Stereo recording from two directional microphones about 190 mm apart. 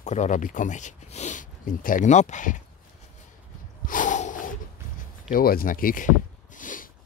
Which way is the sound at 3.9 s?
40° left (ahead or behind).